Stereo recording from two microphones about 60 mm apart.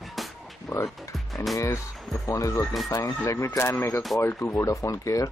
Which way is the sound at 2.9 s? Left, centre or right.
Left.